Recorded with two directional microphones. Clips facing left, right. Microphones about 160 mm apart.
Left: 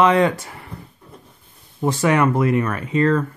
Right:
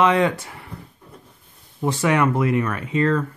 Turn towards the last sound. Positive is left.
turn(degrees=40)  # may be behind; listen again after turning